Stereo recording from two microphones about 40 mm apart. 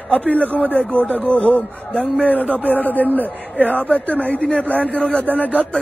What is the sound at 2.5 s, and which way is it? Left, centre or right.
A man's voice, left.